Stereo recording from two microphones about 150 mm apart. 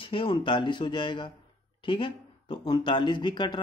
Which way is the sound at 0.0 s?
35° left (ahead or behind).